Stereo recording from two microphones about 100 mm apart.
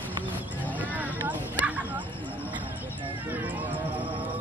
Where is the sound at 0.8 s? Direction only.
15° right (ahead or behind).